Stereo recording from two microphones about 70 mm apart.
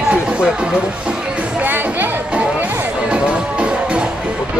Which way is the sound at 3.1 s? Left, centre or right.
Centre.